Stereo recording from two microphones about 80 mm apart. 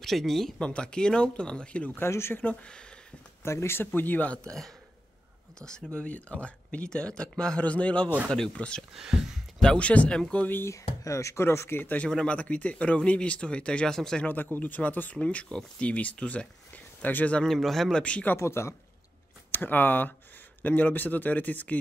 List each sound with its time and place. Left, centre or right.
0.0 s speech: centre
2.0 s speech: left
2.6 s speech: centre
3.4 s speech: left
5.6 s speech: centre
8.9 s speech: centre
9.6 s speech: centre
10.5 s speech: left
12.1 s speech: centre
14.2 s speech: left
17.5 s speech: centre
18.0 s speech: centre
18.3 s speech: left